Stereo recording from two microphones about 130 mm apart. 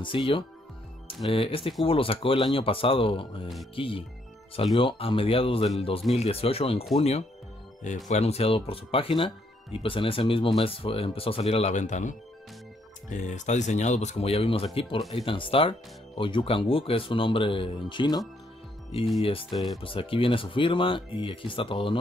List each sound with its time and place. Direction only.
0.0 s speech: 40° left (ahead or behind)
7.8 s speech: 65° left (ahead or behind); by 18.2 s 35° left (ahead or behind)
19.5 s speech: centre (ahead or behind)
19.8 s speech: 45° left (ahead or behind)